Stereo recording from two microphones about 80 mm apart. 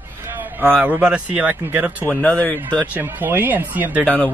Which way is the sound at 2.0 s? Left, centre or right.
Centre.